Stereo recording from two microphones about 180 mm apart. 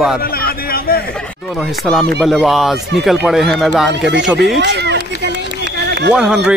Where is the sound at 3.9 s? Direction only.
80° right.